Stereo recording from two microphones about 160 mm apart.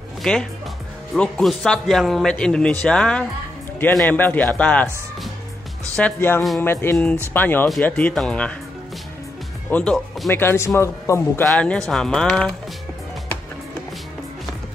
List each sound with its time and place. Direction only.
0.2 s speech: centre (ahead or behind)
9.7 s speech: 10° left (ahead or behind)
11.4 s speech: 5° left (ahead or behind)